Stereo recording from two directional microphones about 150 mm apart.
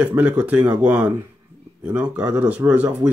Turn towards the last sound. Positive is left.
turn(degrees=-10)  # may be behind; listen again after turning